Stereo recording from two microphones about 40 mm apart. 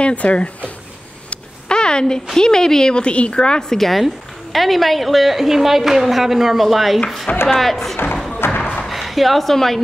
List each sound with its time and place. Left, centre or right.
0.0 s speech: left
1.3 s a sound: left
2.3 s a woman's voice: centre
3.7 s a woman's voice: centre
8.4 s thump: left
8.8 s speech: centre